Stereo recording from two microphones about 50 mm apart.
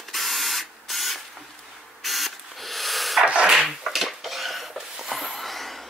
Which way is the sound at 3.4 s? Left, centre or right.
Centre.